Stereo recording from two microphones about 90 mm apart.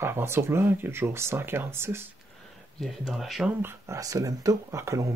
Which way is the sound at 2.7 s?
Centre (ahead or behind).